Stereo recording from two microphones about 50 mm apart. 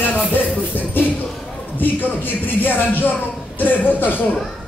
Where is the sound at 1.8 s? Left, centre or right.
Left.